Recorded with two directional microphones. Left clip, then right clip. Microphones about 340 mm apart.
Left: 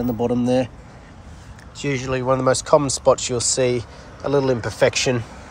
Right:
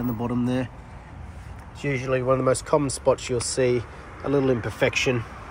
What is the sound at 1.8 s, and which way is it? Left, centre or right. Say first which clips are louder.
Speech: left 2 dB; centre.